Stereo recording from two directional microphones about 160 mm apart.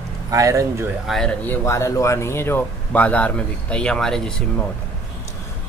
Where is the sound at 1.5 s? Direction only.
15° left (ahead or behind).